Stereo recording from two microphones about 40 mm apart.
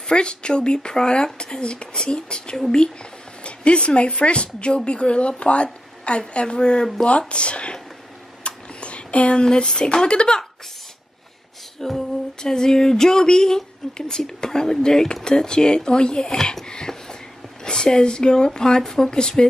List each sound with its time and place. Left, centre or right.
0.0 s speech: left
11.8 s female singing: centre
12.4 s speech: centre
16.6 s a sound: centre
17.6 s speech: centre